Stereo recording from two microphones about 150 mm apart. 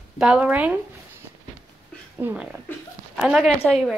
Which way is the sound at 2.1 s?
10° right (ahead or behind).